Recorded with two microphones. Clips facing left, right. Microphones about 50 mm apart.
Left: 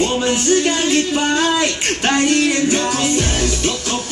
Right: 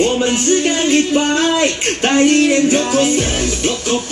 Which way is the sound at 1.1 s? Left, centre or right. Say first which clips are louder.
Right 2 dB; centre.